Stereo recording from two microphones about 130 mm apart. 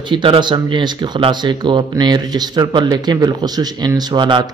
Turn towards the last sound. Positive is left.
turn(degrees=-35)  # may be behind; listen again after turning